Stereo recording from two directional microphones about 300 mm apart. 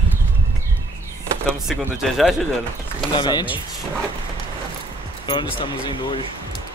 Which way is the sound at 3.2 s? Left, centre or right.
Centre.